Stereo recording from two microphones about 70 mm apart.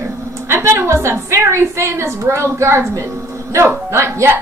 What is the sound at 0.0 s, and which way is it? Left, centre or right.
A woman's voice, right.